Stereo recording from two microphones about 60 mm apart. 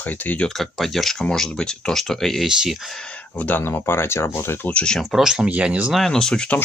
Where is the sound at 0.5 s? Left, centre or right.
Centre.